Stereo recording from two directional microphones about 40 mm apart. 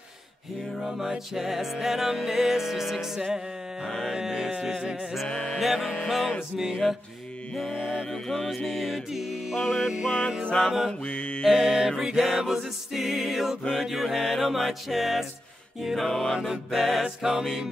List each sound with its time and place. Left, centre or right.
0.8 s music: centre
5.3 s mantra: centre
5.6 s music: centre
6.5 s music: centre
8.1 s music: centre
11.1 s music: left
11.4 s music: centre
16.1 s mantra: centre
16.4 s music: centre